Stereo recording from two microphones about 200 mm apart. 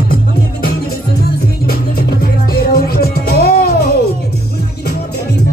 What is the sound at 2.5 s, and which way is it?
Music, 50° left (ahead or behind).